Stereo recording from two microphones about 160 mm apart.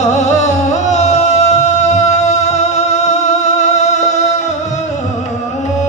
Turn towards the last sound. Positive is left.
turn(degrees=45)  # may be behind; listen again after turning